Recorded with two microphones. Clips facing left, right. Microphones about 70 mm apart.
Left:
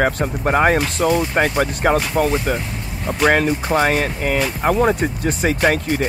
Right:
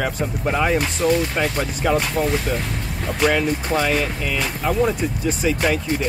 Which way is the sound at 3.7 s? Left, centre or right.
Left.